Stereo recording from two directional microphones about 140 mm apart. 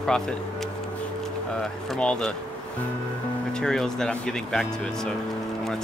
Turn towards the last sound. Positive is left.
turn(degrees=5)  # may be behind; listen again after turning